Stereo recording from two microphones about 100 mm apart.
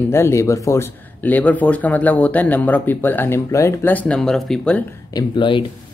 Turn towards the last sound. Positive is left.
turn(degrees=55)  # may be behind; listen again after turning